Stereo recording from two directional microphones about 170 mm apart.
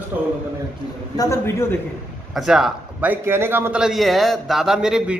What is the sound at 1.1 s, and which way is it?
Speech, 20° left (ahead or behind).